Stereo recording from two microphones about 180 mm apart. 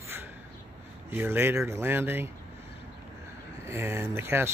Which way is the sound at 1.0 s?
10° right (ahead or behind).